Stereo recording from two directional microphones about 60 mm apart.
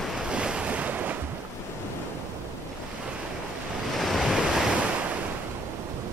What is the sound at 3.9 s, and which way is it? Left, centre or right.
Waves, centre.